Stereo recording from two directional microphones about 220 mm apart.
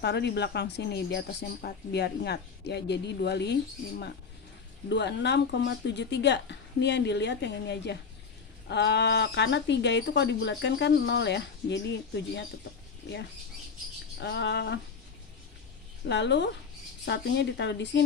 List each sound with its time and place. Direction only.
0.0 s speech: 50° left (ahead or behind)
4.8 s speech: 50° left (ahead or behind)
14.2 s speech: 50° left (ahead or behind)
16.1 s speech: 50° left (ahead or behind)